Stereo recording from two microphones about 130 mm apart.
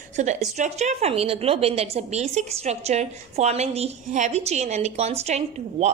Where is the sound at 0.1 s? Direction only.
65° right (ahead or behind).